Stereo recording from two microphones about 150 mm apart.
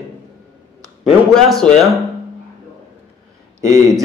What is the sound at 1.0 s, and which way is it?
Speech, 5° left (ahead or behind).